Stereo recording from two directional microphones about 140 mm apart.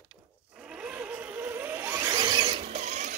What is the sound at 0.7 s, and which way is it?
Vehicle, 10° right (ahead or behind).